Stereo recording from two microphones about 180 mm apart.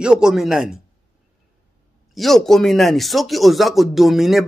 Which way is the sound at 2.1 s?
Centre (ahead or behind).